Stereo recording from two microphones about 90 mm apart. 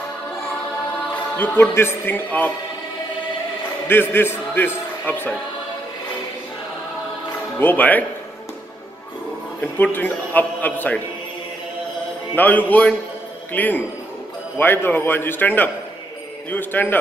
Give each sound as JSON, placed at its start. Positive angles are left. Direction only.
{"t": 1.3, "sound": "speech", "side_deg": 20}
{"t": 3.8, "sound": "a man's voice", "side_deg": 25}
{"t": 7.5, "sound": "speech", "side_deg": 20}
{"t": 9.6, "sound": "a man's voice", "side_deg": 20}
{"t": 12.4, "sound": "speech", "side_deg": 20}